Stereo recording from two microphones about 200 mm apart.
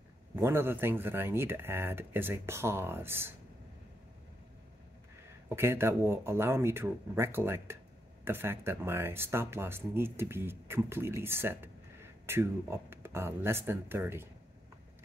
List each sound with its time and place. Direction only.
0.4 s speech: 10° right (ahead or behind)
5.5 s speech: 10° right (ahead or behind)